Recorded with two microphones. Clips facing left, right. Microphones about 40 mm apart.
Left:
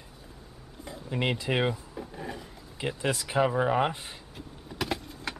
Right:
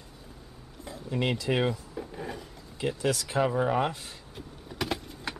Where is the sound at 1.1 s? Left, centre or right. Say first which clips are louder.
Even; centre.